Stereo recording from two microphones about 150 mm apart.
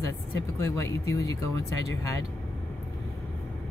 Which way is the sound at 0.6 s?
20° left (ahead or behind).